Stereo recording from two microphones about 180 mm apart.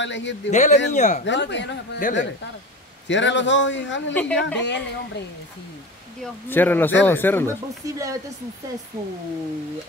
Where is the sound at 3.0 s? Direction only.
85° left.